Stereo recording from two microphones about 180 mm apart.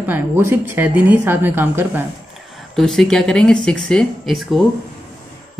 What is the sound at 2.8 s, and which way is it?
Speech, 5° left (ahead or behind).